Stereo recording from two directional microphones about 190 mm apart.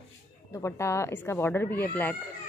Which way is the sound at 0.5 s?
15° left (ahead or behind).